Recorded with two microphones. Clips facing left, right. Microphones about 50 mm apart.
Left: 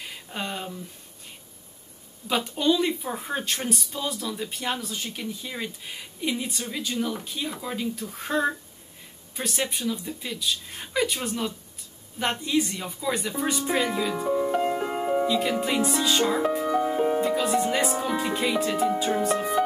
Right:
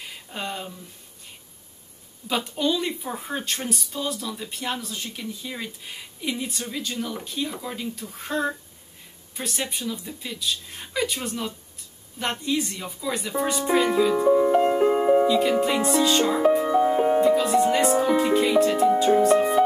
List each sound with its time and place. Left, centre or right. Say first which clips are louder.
0.0 s a sound: even; centre
2.2 s a woman's voice: left 1 dB; centre
14.3 s speech: right 5 dB; centre
14.6 s music: right 6 dB; centre
15.2 s speech: right 4 dB; centre
15.6 s music: right 4 dB; centre; by 17.2 s right
17.2 s music: right 5 dB; centre